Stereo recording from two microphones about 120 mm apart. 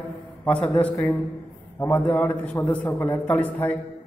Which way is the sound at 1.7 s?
10° left (ahead or behind).